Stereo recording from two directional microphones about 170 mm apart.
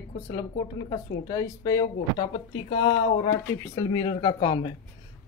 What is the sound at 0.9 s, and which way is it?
A woman's voice, 20° left (ahead or behind).